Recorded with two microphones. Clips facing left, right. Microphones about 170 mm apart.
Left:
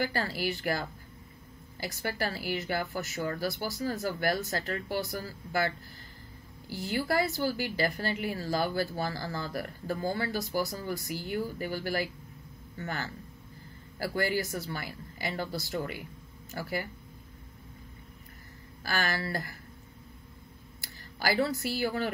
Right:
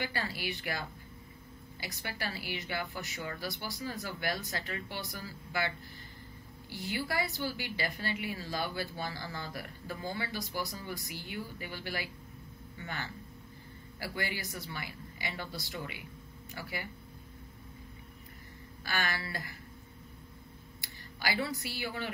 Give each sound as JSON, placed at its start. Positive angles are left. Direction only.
{"t": 0.0, "sound": "a woman's voice", "side_deg": 45}
{"t": 6.7, "sound": "a woman's voice", "side_deg": 40}
{"t": 18.9, "sound": "a woman's voice", "side_deg": 40}
{"t": 20.8, "sound": "speech", "side_deg": 45}